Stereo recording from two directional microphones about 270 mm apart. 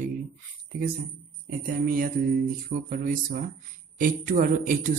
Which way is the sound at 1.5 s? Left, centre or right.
Right.